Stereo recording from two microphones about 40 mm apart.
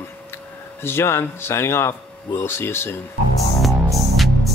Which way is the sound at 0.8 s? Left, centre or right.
Left.